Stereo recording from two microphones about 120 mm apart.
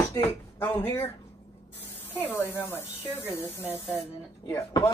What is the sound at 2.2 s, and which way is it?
Speech, 20° left (ahead or behind).